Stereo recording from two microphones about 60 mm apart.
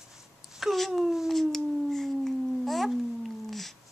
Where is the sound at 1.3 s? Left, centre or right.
Centre.